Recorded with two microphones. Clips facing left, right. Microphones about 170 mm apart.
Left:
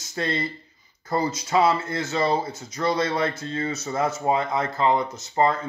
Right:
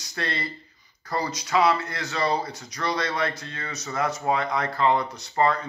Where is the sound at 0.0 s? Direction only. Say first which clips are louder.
Left 4 dB; 25° left (ahead or behind).